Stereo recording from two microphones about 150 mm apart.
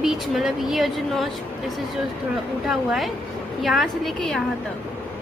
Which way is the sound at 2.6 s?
Centre (ahead or behind).